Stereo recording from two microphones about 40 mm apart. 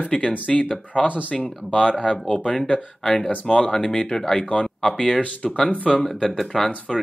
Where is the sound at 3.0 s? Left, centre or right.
Centre.